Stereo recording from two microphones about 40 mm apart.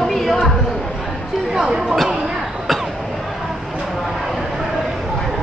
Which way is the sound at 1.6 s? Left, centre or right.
Centre.